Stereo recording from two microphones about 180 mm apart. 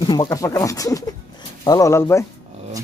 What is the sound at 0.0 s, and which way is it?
A man's voice, 25° left (ahead or behind).